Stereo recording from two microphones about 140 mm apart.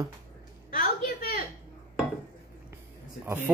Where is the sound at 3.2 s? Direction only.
15° right (ahead or behind).